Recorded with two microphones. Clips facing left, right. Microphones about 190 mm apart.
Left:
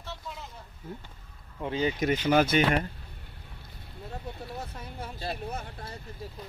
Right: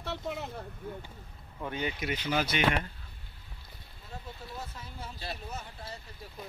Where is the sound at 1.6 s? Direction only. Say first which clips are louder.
Left 6 dB; 25° left (ahead or behind).